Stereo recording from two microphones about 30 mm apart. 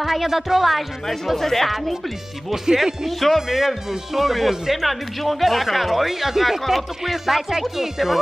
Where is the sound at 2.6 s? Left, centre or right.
Centre.